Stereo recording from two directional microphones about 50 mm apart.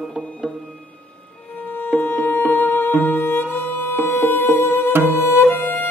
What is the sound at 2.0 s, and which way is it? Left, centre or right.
Music, left.